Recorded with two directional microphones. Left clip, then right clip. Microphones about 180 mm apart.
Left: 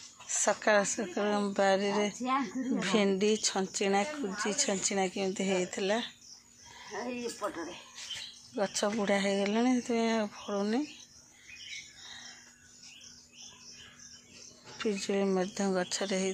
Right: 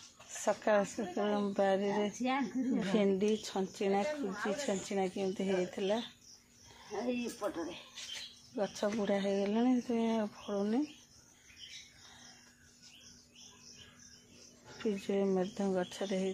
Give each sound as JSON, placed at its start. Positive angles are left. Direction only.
{"t": 0.3, "sound": "a woman's voice", "side_deg": 5}
{"t": 6.9, "sound": "speech", "side_deg": -50}
{"t": 8.5, "sound": "a woman's voice", "side_deg": 15}
{"t": 14.8, "sound": "a woman's voice", "side_deg": 5}